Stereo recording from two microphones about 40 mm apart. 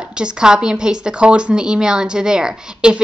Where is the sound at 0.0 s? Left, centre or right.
Right.